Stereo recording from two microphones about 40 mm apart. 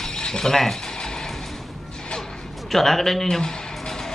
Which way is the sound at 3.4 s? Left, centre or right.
Centre.